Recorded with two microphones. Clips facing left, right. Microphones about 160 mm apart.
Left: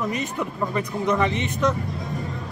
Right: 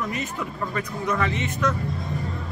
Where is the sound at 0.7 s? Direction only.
20° left (ahead or behind).